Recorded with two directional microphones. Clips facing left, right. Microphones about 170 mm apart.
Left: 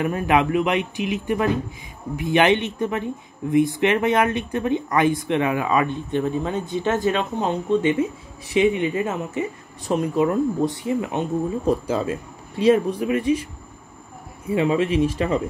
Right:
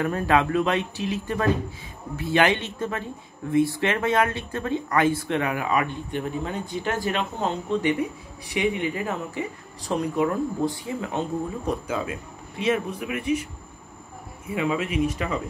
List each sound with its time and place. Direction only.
0.0 s speech: 15° left (ahead or behind)
11.9 s speech: 35° left (ahead or behind)
14.5 s speech: 30° left (ahead or behind)